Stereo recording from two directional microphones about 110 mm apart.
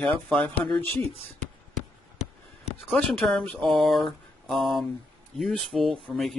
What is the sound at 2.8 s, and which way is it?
Speech, centre (ahead or behind).